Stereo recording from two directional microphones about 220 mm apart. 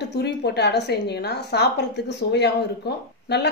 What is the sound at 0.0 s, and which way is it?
A woman's voice, 50° left (ahead or behind).